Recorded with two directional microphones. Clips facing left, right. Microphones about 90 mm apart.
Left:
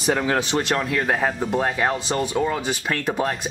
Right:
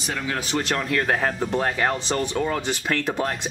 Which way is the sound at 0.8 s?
Centre (ahead or behind).